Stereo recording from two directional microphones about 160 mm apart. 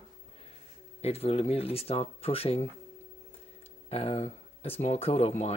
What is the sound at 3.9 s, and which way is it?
Speech, 40° left (ahead or behind).